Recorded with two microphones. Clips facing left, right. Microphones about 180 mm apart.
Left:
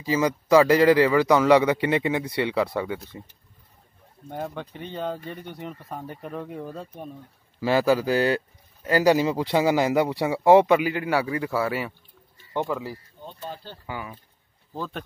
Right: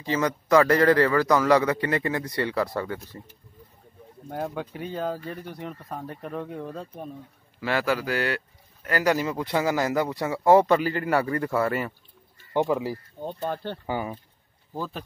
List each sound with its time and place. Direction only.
0.0 s speech: 10° left (ahead or behind)
1.5 s speech: 25° left (ahead or behind)
2.7 s speech: 10° left (ahead or behind)
4.3 s speech: 5° right (ahead or behind)
7.7 s speech: 15° left (ahead or behind)
8.1 s speech: 35° left (ahead or behind)
9.1 s speech: 20° left (ahead or behind)
10.6 s speech: 10° left (ahead or behind)
12.5 s speech: 20° right (ahead or behind)
13.2 s speech: 50° right (ahead or behind)
13.8 s speech: 30° right (ahead or behind)
14.7 s speech: 5° right (ahead or behind)